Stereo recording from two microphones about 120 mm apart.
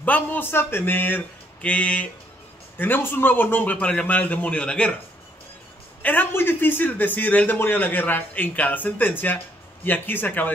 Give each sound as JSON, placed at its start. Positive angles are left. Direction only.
{"t": 0.0, "sound": "a man's voice", "side_deg": 15}
{"t": 6.0, "sound": "a man's voice", "side_deg": 15}